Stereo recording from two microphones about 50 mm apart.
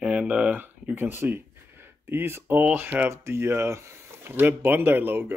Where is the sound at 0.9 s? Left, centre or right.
Right.